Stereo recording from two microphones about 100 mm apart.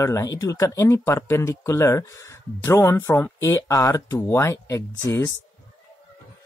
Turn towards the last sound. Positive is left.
turn(degrees=30)  # may be behind; listen again after turning